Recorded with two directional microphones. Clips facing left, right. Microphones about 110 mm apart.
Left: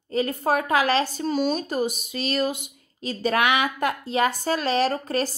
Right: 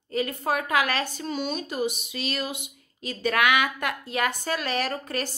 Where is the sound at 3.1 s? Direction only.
30° left (ahead or behind).